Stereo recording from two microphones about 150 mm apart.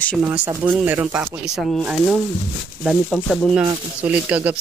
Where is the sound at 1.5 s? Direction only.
Centre (ahead or behind).